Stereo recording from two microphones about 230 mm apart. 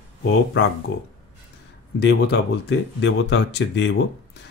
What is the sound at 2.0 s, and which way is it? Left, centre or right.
Speech, left.